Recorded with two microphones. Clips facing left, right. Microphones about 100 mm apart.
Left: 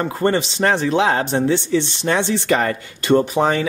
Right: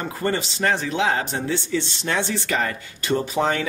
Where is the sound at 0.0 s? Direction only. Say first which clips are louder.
Left 6 dB; 50° left (ahead or behind).